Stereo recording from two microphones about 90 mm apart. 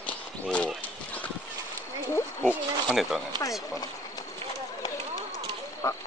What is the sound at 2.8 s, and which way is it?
Speech, centre (ahead or behind).